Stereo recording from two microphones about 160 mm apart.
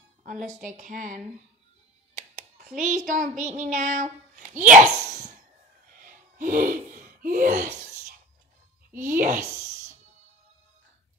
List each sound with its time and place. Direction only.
0.2 s music: 50° right (ahead or behind)
0.6 s a woman's voice: 50° right (ahead or behind)
2.7 s a woman's voice: 50° right (ahead or behind)
6.0 s a sound: 55° right (ahead or behind)
9.0 s a woman's voice: 55° right (ahead or behind)